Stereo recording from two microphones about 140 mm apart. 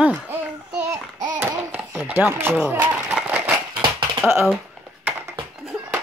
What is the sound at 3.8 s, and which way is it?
Typing, 35° right (ahead or behind).